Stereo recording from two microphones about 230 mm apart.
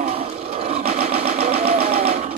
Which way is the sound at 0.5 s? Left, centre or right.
Right.